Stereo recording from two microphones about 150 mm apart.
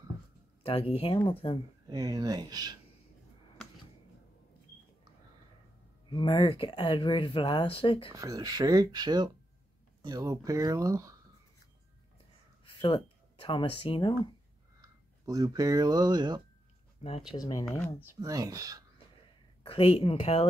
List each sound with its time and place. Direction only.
0.7 s speech: 40° left (ahead or behind)
1.9 s speech: 25° right (ahead or behind)
6.0 s speech: 30° left (ahead or behind)
8.1 s speech: 25° right (ahead or behind)
12.8 s speech: 35° left (ahead or behind)
14.8 s speech: 25° right (ahead or behind)
17.4 s speech: 25° left (ahead or behind)
18.2 s speech: 25° right (ahead or behind)
19.6 s speech: 40° left (ahead or behind)